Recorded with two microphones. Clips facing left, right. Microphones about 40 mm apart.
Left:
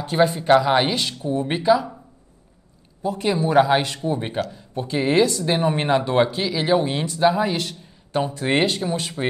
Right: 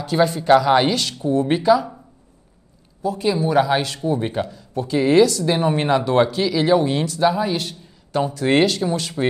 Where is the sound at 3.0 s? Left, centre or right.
Left.